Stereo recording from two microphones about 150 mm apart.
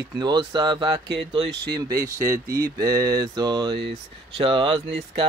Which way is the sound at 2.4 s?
80° right.